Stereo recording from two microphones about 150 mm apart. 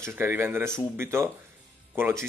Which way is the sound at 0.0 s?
15° right (ahead or behind).